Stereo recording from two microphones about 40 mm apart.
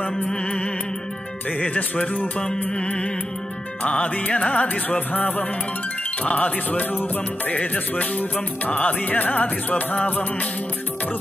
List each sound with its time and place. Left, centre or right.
0.3 s music: left
1.6 s music: left
2.8 s music: left
7.5 s music: left